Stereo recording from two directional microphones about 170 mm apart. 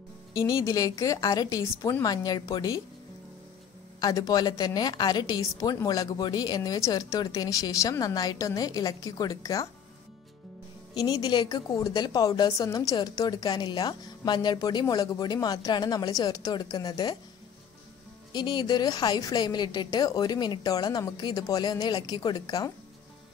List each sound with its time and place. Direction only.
0.3 s a woman's voice: 20° left (ahead or behind)
4.0 s a woman's voice: 20° left (ahead or behind)
11.0 s a woman's voice: 20° left (ahead or behind)
18.3 s a woman's voice: 25° left (ahead or behind)